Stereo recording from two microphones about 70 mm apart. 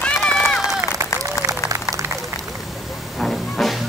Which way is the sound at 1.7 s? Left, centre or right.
Right.